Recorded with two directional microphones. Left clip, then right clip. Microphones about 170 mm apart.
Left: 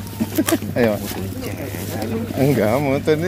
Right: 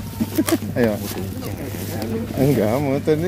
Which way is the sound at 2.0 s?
25° right (ahead or behind).